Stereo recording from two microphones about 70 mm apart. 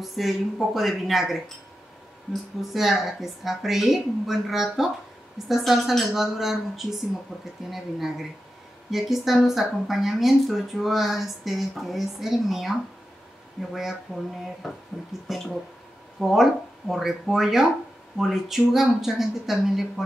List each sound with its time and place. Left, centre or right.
0.0 s speech: centre
2.7 s speech: centre